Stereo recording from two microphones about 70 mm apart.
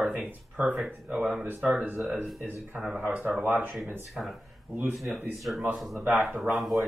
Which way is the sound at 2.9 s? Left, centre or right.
Right.